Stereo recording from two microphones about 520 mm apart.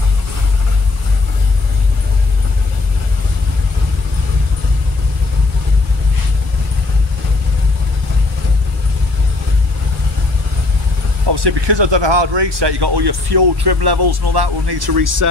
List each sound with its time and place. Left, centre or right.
11.2 s speech: right